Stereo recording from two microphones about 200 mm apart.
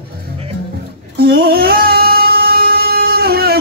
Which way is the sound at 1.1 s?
55° right (ahead or behind).